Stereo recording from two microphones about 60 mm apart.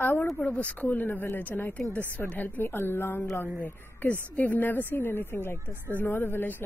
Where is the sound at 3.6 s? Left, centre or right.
Left.